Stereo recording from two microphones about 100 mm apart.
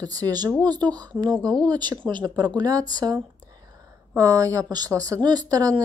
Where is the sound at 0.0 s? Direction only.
40° right (ahead or behind).